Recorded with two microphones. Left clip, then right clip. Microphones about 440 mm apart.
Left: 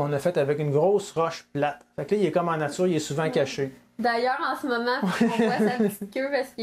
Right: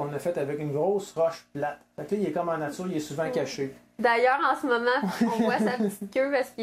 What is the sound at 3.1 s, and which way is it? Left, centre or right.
Speech, left.